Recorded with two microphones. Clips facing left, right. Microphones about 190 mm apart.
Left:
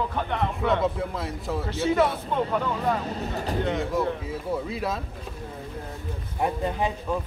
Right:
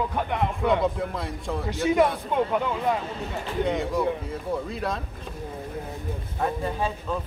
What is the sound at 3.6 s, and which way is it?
Speech, centre (ahead or behind).